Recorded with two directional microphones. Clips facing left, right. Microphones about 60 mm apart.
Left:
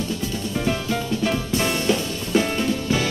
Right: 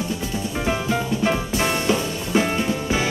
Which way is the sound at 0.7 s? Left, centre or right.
Right.